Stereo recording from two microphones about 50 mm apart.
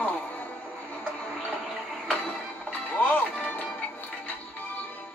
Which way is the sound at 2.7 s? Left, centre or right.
Left.